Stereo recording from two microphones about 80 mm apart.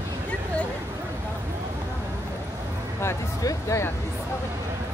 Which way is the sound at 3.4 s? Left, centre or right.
Left.